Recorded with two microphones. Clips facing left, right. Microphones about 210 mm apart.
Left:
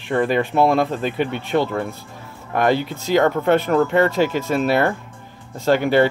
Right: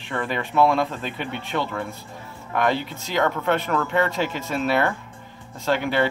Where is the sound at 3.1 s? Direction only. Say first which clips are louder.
Left 6 dB; 40° left (ahead or behind).